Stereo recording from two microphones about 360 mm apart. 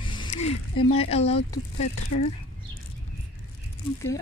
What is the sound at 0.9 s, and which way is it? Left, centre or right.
Speech, centre.